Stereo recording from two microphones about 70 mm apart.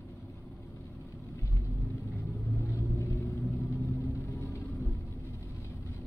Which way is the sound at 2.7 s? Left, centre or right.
Left.